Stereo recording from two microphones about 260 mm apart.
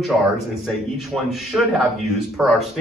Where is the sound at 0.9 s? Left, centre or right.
Centre.